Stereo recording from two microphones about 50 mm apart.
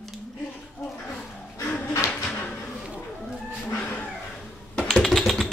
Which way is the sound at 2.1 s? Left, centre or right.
Left.